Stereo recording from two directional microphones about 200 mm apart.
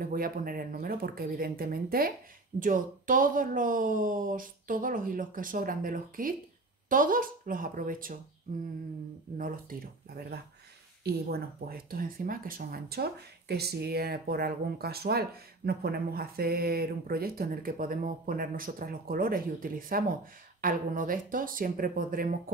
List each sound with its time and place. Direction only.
0.0 s speech: 45° right (ahead or behind)
9.4 s speech: 45° right (ahead or behind)